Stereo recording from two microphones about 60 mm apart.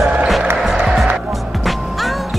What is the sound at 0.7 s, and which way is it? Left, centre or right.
Music, centre.